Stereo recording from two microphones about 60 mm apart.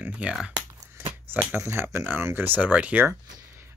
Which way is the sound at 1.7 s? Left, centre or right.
Right.